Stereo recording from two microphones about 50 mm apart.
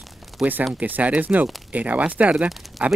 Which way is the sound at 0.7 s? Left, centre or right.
Right.